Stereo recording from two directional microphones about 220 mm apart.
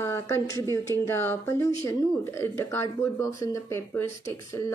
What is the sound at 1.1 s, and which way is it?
Speech, 10° left (ahead or behind).